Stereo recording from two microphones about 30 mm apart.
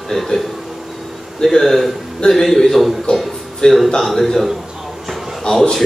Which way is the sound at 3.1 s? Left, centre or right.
Left.